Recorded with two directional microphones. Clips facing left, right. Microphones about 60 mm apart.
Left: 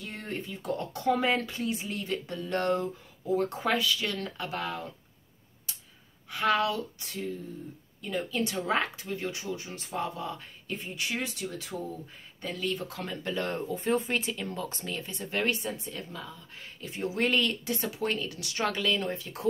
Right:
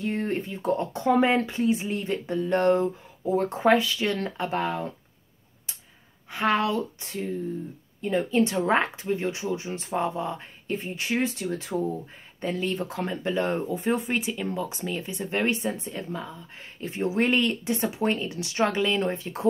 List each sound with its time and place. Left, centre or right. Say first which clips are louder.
0.0 s speech: right 9 dB; right
6.3 s speech: right 3 dB; right